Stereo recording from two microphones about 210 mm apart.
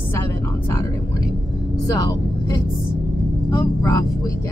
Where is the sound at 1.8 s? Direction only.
15° left (ahead or behind).